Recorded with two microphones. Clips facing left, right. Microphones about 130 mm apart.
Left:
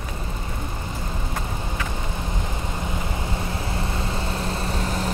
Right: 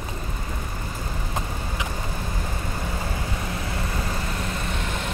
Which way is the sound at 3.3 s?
30° left (ahead or behind).